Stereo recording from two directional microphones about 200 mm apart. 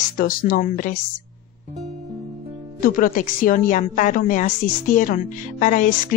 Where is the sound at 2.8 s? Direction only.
45° left (ahead or behind).